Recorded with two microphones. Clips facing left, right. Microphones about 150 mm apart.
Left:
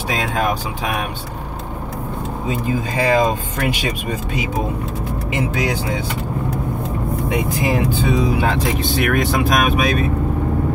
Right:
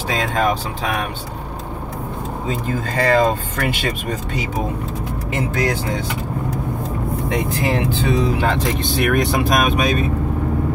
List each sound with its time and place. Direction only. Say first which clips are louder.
0.1 s speech: right 1 dB; 10° left (ahead or behind)
2.4 s speech: left 2 dB; 10° left (ahead or behind)
7.2 s speech: left 1 dB; 10° left (ahead or behind)
8.8 s speech: right 2 dB; centre (ahead or behind)